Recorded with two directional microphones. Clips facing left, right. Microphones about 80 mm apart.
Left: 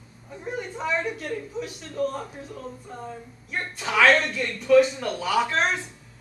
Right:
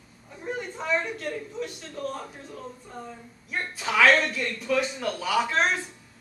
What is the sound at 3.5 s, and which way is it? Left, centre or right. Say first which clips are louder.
A man's voice: even; centre.